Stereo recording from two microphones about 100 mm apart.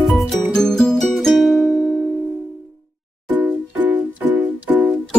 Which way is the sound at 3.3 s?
20° right (ahead or behind).